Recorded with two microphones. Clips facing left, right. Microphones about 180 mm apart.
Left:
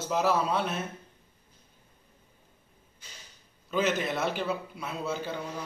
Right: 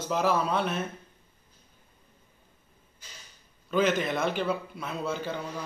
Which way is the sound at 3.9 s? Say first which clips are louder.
Right 2 dB; 5° left (ahead or behind).